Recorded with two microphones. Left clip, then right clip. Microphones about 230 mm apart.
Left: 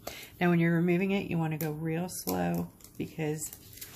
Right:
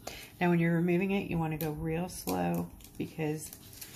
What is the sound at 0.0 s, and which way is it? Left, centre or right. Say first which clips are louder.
Speech: left 1 dB; centre.